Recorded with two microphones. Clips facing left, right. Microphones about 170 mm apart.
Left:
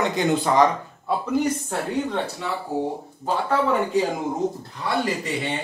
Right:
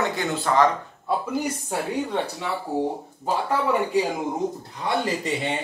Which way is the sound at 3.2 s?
15° right (ahead or behind).